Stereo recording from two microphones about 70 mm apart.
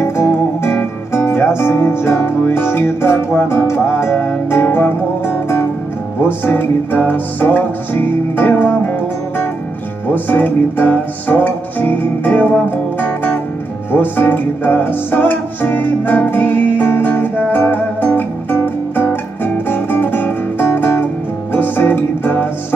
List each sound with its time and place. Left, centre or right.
0.0 s music: left
10.2 s music: left
13.9 s music: left